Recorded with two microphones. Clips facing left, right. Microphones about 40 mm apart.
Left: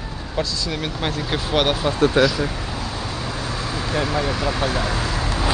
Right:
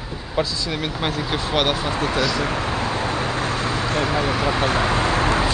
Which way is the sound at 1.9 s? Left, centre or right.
Right.